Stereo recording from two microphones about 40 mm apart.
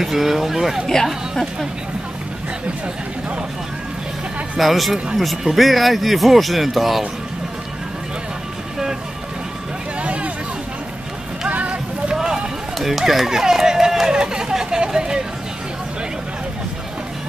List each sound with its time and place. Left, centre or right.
0.0 s speech: centre
4.6 s speech: centre
10.0 s vehicle: right
11.4 s music: right
12.7 s speech: centre